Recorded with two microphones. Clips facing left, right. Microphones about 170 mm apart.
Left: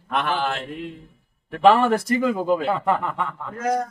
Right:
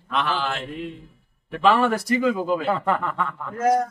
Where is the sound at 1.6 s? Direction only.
50° left (ahead or behind).